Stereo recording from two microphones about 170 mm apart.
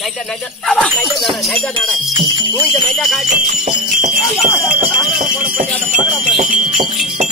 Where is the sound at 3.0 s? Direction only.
Centre (ahead or behind).